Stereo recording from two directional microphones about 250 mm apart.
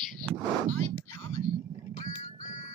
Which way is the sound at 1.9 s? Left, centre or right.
Left.